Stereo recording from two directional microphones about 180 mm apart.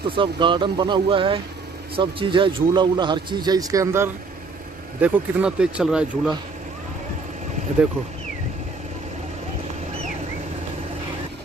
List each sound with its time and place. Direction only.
0.1 s speech: 25° right (ahead or behind); by 6.3 s 5° right (ahead or behind)